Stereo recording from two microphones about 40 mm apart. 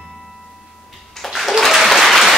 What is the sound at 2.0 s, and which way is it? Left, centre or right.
Applause, centre.